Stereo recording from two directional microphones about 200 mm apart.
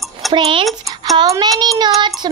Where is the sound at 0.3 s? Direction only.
25° right (ahead or behind).